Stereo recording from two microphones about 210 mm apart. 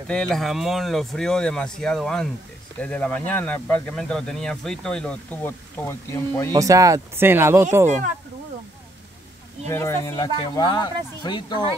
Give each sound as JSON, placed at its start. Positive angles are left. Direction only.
{"t": 0.1, "sound": "speech", "side_deg": 5}
{"t": 6.5, "sound": "speech", "side_deg": -15}
{"t": 9.7, "sound": "speech", "side_deg": 15}